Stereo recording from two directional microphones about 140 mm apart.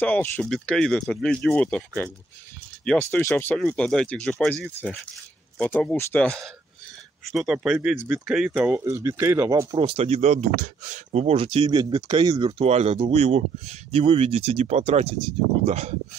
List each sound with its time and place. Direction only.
0.0 s speech: 10° left (ahead or behind)
5.6 s speech: 10° left (ahead or behind); by 8.7 s 5° right (ahead or behind)
8.7 s speech: 20° right (ahead or behind)
9.8 s speech: 45° right (ahead or behind)
12.6 s speech: 50° right (ahead or behind)